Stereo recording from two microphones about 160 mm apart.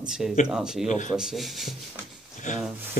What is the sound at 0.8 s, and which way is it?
Speech, 50° left (ahead or behind).